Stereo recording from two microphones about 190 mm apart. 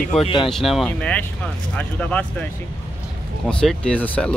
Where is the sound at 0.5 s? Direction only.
Centre (ahead or behind).